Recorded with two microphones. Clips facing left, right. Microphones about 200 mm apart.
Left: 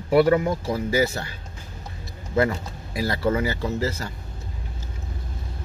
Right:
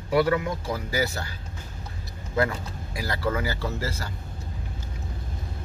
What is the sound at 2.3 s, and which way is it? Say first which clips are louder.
Speech: left 4 dB; 25° left (ahead or behind).